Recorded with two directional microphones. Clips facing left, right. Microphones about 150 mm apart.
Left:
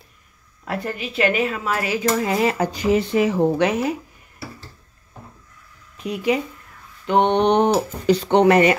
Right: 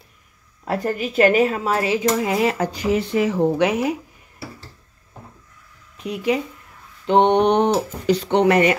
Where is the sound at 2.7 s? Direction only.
20° left (ahead or behind).